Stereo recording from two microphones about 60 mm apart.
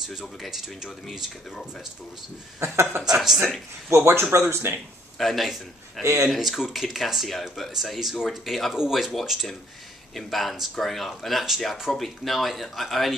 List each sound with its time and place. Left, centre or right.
0.1 s speech: centre
2.6 s speech: right
5.2 s speech: centre
6.0 s speech: right
6.3 s speech: centre